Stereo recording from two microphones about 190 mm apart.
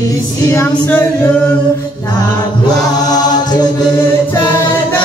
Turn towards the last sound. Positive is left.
turn(degrees=20)  # may be behind; listen again after turning